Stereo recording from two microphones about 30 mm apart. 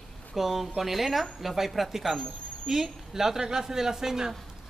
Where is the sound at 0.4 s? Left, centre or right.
Centre.